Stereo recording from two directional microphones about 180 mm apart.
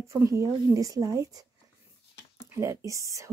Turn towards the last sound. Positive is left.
turn(degrees=-15)  # may be behind; listen again after turning